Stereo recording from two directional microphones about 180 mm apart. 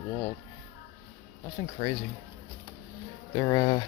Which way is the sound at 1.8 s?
30° left (ahead or behind).